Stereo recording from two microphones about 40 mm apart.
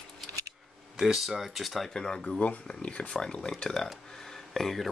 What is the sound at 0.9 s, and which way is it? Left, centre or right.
Speech, centre.